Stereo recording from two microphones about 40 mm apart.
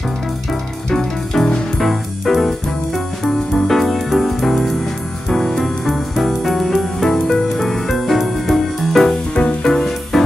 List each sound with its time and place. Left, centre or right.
0.8 s music: centre
1.8 s music: centre
5.3 s music: centre
5.9 s music: centre
9.3 s music: left
10.1 s music: centre